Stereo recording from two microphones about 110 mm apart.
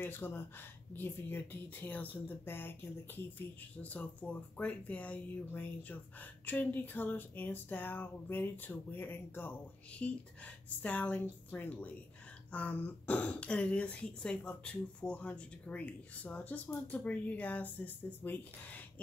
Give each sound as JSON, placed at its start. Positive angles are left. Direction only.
{"t": 0.0, "sound": "speech", "side_deg": 20}